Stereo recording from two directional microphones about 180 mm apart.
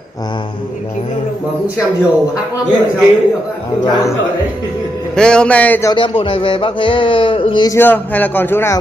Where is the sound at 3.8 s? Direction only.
25° left (ahead or behind).